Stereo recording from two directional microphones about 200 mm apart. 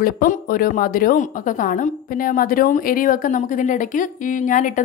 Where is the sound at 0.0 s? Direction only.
45° left (ahead or behind).